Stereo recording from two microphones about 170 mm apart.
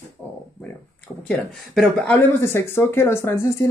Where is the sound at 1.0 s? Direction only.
5° left (ahead or behind).